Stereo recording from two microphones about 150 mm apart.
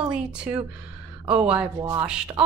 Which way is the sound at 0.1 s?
5° right (ahead or behind).